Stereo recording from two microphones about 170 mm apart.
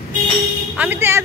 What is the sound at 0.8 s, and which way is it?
Speech, 10° right (ahead or behind).